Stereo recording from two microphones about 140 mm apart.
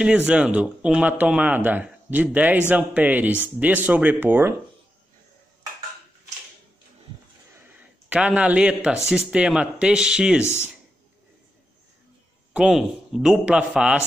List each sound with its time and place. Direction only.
0.3 s speech: 10° right (ahead or behind)
8.1 s speech: 10° right (ahead or behind)
10.4 s speech: 20° left (ahead or behind)
12.5 s speech: 5° right (ahead or behind)